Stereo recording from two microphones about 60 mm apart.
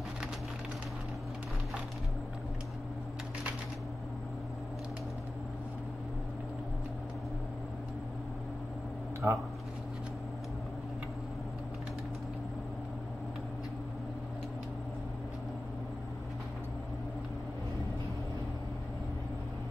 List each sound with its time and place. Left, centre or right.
9.2 s speech: right